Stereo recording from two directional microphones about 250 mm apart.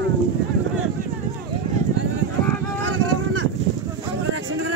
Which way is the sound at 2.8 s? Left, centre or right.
Right.